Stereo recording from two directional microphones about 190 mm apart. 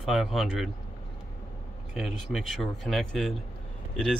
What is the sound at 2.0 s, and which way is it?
Speech, centre (ahead or behind).